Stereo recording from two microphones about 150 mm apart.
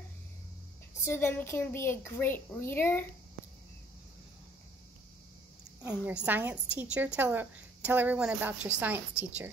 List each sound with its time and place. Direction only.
1.0 s a woman's voice: 15° left (ahead or behind)
6.2 s a woman's voice: 10° right (ahead or behind)